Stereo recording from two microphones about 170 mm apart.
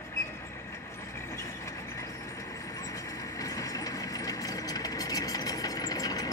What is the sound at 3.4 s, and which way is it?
Engine, 20° left (ahead or behind).